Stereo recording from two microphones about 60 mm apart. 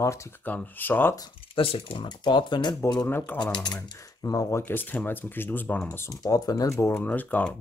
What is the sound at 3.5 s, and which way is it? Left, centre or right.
Speech, left.